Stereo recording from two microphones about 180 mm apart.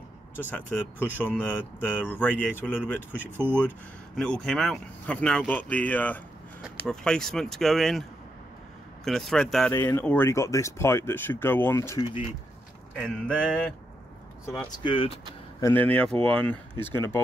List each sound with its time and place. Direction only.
0.4 s speech: 10° left (ahead or behind)
3.3 s speech: 10° right (ahead or behind)
4.2 s speech: 5° left (ahead or behind)
9.7 s speech: 15° left (ahead or behind)
12.9 s speech: 5° left (ahead or behind)
14.8 s speech: 30° left (ahead or behind)
15.6 s speech: 10° left (ahead or behind)